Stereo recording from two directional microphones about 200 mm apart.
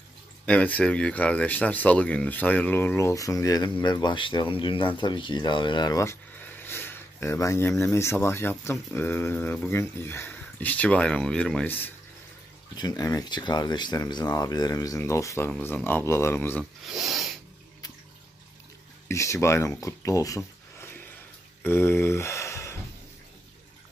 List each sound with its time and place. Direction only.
0.5 s speech: 5° left (ahead or behind)
16.8 s speech: centre (ahead or behind)
19.0 s speech: 15° left (ahead or behind)